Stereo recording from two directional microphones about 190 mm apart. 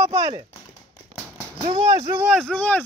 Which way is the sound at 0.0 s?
15° right (ahead or behind).